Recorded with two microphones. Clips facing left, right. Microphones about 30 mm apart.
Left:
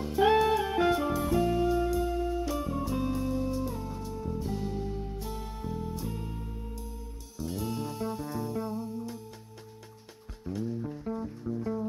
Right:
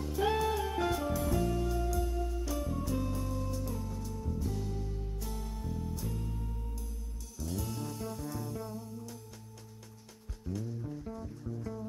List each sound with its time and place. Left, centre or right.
0.0 s music: left
10.4 s music: left